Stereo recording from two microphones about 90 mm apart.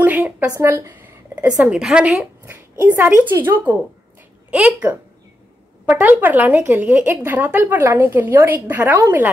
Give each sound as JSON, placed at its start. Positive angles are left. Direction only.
{"t": 0.0, "sound": "speech", "side_deg": -20}
{"t": 0.9, "sound": "a sound", "side_deg": -20}
{"t": 1.6, "sound": "a woman's voice", "side_deg": -10}
{"t": 2.8, "sound": "a woman's voice", "side_deg": -20}